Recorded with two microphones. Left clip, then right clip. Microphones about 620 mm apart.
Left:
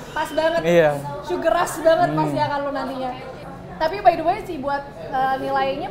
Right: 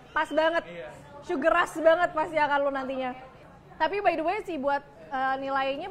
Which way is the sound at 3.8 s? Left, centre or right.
Right.